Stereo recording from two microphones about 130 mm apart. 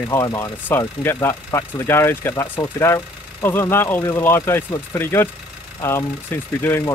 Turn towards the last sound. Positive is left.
turn(degrees=20)  # may be behind; listen again after turning